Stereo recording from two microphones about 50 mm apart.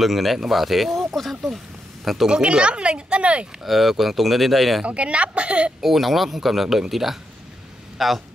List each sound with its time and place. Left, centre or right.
0.0 s a man's voice: centre
2.2 s speech: centre
3.6 s a man's voice: centre
4.8 s speech: right
5.8 s a man's voice: centre